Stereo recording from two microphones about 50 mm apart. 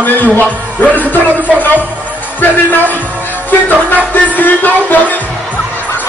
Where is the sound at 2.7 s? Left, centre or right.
Left.